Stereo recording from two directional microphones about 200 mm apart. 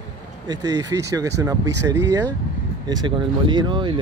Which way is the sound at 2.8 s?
20° right (ahead or behind).